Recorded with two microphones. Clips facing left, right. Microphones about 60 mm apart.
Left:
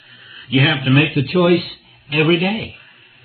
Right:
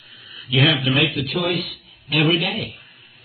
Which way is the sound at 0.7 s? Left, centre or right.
Left.